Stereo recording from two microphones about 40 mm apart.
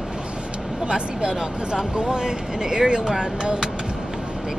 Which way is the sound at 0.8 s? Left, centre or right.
Right.